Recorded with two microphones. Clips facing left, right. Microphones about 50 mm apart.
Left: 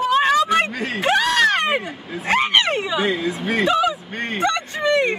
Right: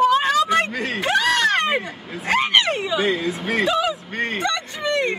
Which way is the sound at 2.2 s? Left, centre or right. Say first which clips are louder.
Left 1 dB; centre.